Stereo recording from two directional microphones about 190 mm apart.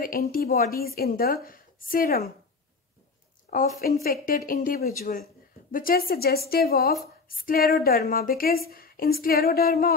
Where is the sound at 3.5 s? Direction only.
45° left (ahead or behind).